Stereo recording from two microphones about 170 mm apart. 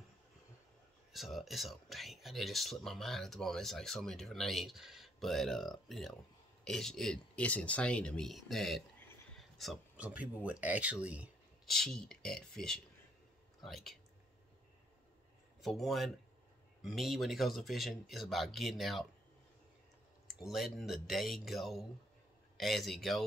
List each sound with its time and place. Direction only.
1.1 s speech: centre (ahead or behind)
15.6 s speech: centre (ahead or behind)
20.3 s speech: centre (ahead or behind)